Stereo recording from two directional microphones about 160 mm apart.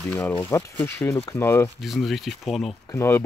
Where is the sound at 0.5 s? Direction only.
15° left (ahead or behind).